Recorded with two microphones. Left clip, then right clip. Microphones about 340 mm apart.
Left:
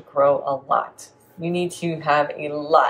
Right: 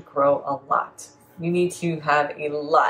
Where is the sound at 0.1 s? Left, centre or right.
Centre.